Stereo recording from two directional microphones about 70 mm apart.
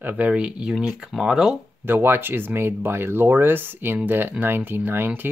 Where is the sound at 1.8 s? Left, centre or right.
Right.